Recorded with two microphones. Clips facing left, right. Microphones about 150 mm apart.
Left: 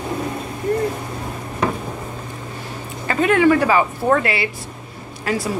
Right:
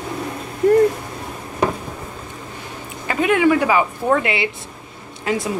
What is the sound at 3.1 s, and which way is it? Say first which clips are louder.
Speech: left 1 dB; 10° right (ahead or behind).